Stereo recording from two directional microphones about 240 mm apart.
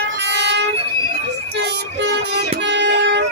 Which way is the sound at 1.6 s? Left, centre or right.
Right.